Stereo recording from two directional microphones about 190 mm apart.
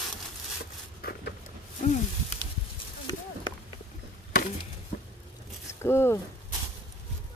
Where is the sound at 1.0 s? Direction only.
55° left (ahead or behind).